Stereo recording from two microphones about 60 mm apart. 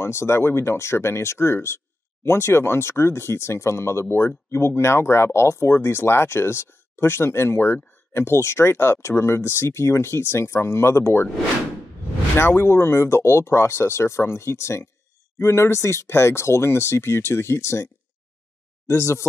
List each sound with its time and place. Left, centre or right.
0.0 s speech: left
12.4 s speech: left
18.9 s speech: left